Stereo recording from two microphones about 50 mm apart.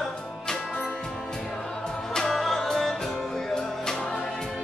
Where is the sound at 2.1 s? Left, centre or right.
Centre.